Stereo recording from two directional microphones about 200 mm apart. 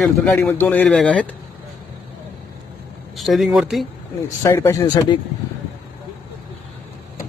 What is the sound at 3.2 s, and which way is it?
Speech, centre (ahead or behind).